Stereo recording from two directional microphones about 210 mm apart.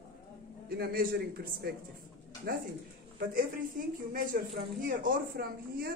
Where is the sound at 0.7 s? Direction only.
50° right (ahead or behind).